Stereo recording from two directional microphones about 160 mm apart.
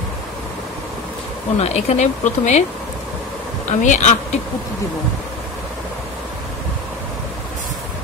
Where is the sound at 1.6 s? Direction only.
40° left (ahead or behind).